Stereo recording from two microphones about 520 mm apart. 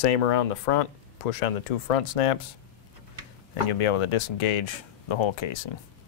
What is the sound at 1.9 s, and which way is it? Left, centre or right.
Speech, left.